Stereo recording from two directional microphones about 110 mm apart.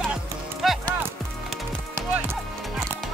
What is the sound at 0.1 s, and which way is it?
Music, centre (ahead or behind).